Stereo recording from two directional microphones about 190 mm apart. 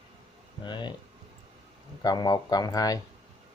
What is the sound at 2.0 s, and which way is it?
Speech, 20° left (ahead or behind).